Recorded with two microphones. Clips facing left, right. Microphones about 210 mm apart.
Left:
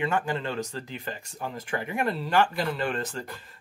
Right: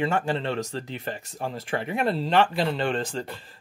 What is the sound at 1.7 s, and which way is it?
Speech, 30° right (ahead or behind).